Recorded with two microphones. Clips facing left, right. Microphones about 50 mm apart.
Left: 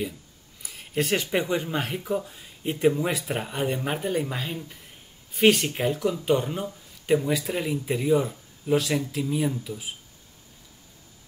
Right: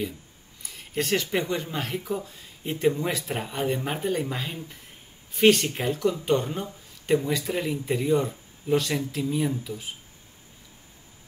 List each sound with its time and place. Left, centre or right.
0.6 s speech: centre